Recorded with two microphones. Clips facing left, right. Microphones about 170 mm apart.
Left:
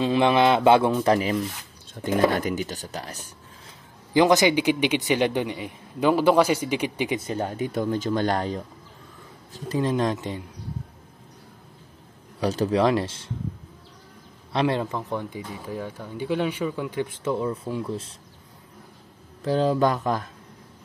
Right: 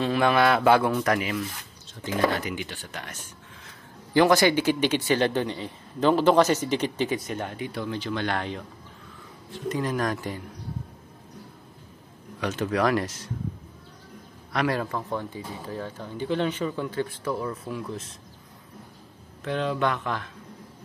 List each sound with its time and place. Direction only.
0.0 s speech: 20° left (ahead or behind)
2.0 s speech: 50° left (ahead or behind)
4.1 s speech: 15° left (ahead or behind)
7.2 s speech: 30° left (ahead or behind)
12.4 s speech: 35° left (ahead or behind)
14.5 s speech: 25° left (ahead or behind)
19.4 s speech: 35° left (ahead or behind)